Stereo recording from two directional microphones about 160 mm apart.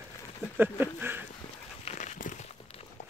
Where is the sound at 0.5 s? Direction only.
15° right (ahead or behind).